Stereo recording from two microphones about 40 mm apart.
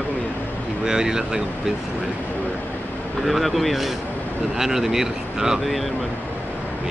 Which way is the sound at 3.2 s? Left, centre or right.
Centre.